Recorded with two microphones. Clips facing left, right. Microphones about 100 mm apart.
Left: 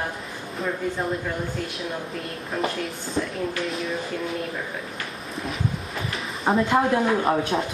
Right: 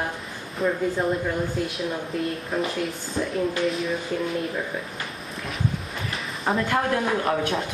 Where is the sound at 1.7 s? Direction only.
Centre (ahead or behind).